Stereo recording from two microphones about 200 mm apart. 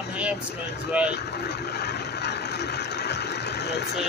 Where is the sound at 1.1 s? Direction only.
55° left (ahead or behind).